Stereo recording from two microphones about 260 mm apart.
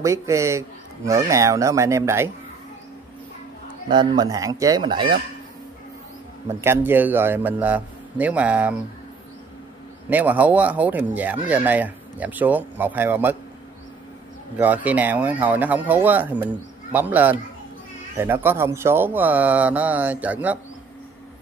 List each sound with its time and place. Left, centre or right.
0.0 s speech: centre
3.9 s speech: centre
6.6 s speech: centre
10.0 s speech: centre
14.6 s speech: centre